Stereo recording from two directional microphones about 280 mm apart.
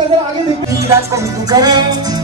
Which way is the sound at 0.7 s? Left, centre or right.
Centre.